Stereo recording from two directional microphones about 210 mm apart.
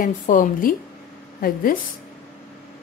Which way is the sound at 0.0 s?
40° left (ahead or behind).